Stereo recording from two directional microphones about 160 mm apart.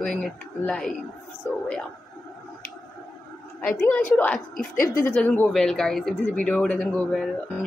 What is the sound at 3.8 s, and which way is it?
Speech, 10° left (ahead or behind).